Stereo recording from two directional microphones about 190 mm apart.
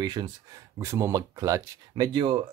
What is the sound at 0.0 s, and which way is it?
Speech, 20° right (ahead or behind).